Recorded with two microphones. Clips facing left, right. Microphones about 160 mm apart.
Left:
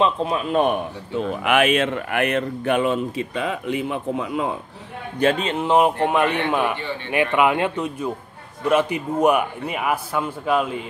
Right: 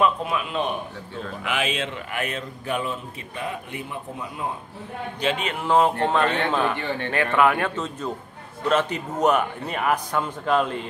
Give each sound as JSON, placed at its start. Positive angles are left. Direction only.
{"t": 0.0, "sound": "a man's voice", "side_deg": 30}
{"t": 0.6, "sound": "a man's voice", "side_deg": 55}
{"t": 5.4, "sound": "a man's voice", "side_deg": 25}